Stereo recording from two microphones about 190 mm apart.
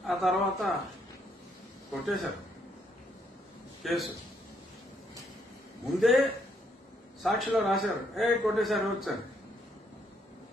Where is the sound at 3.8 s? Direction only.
Centre (ahead or behind).